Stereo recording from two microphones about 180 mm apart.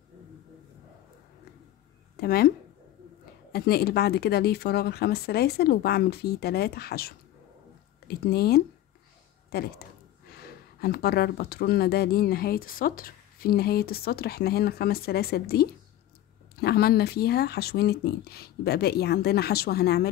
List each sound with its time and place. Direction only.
2.1 s speech: 60° left (ahead or behind)
3.5 s speech: 60° left (ahead or behind)